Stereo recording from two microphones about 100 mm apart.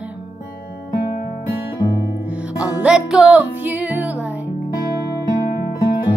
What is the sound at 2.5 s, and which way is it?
Music, 10° right (ahead or behind).